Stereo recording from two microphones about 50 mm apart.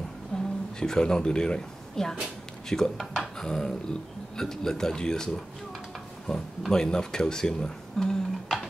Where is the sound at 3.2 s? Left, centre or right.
Centre.